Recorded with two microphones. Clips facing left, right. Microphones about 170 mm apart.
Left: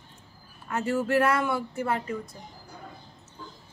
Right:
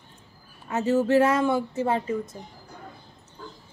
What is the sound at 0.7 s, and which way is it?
Speech, 20° right (ahead or behind).